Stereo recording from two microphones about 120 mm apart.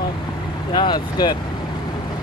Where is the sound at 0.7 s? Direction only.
40° left (ahead or behind).